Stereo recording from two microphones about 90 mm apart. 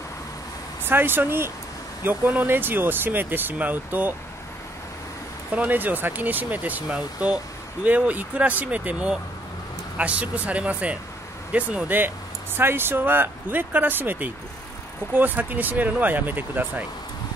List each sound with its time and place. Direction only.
0.8 s speech: 25° right (ahead or behind)
5.5 s speech: 20° right (ahead or behind)